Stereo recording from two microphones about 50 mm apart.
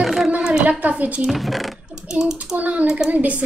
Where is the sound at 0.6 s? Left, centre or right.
Right.